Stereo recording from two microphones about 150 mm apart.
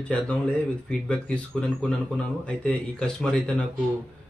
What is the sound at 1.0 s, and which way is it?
Speech, 5° left (ahead or behind).